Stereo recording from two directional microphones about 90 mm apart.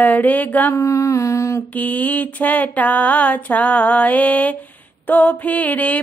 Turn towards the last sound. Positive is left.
turn(degrees=15)  # may be behind; listen again after turning